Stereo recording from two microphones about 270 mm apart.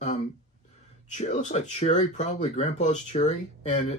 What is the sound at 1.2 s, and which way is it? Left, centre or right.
Speech, left.